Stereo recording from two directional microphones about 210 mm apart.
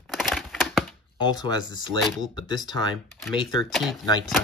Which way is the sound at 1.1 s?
20° left (ahead or behind).